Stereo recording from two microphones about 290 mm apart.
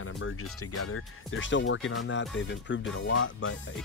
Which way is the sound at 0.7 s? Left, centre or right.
Left.